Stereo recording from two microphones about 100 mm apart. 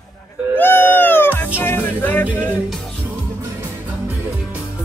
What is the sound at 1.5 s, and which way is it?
Music, 20° left (ahead or behind).